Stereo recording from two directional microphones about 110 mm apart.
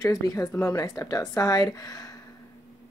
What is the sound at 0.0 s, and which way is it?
A woman's voice, 30° left (ahead or behind).